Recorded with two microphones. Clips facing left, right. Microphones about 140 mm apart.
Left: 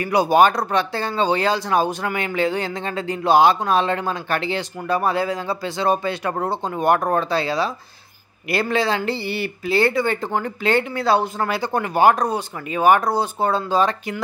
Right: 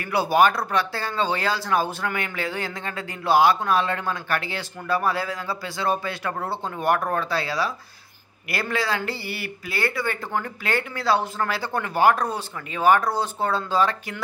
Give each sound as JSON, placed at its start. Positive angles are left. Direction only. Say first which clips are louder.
{"t": 0.0, "sound": "speech", "louder": "left 4 dB", "side_deg": 15}